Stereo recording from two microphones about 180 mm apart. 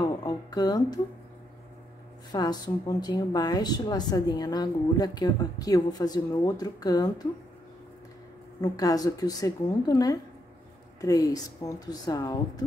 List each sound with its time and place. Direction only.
0.0 s music: 20° left (ahead or behind)
2.3 s a woman's voice: 20° left (ahead or behind)
8.5 s a woman's voice: 20° left (ahead or behind)